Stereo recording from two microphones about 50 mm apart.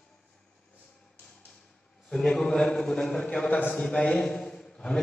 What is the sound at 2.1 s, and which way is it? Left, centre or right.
A man's voice, centre.